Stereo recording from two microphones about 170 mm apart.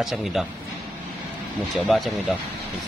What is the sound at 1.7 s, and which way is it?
Speech, centre (ahead or behind).